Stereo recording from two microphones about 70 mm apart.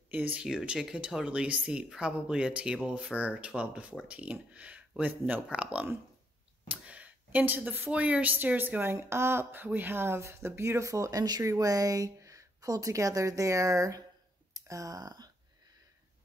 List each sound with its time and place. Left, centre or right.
0.1 s speech: right
0.5 s speech: centre; by 8.9 s right
8.9 s speech: right
11.4 s speech: right